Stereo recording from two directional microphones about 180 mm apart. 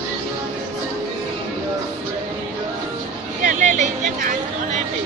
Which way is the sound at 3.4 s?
40° right (ahead or behind).